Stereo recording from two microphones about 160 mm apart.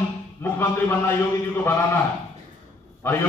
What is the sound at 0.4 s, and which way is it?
A man's voice, 15° left (ahead or behind).